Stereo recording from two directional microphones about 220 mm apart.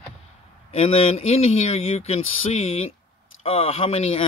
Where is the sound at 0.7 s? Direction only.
25° left (ahead or behind).